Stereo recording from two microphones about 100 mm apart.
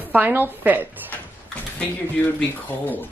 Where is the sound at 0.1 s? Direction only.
20° right (ahead or behind).